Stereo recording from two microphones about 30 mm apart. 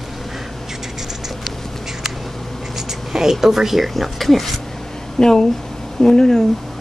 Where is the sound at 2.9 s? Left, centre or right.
Centre.